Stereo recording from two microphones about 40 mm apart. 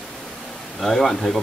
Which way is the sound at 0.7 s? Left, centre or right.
Centre.